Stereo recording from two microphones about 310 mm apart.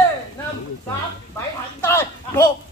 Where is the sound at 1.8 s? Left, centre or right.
Centre.